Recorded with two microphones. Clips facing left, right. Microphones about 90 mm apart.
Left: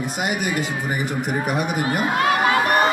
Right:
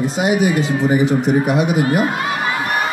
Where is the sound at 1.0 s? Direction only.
10° left (ahead or behind).